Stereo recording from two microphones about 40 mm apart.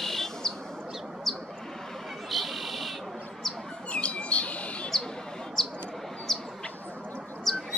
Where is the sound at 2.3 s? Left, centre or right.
Centre.